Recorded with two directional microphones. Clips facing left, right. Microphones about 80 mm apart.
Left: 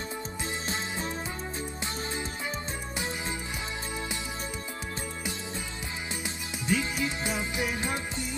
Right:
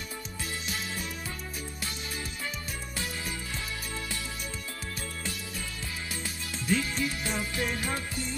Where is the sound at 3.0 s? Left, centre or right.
Left.